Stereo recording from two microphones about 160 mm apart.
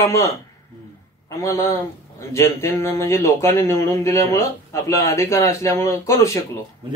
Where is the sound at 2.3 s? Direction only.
15° left (ahead or behind).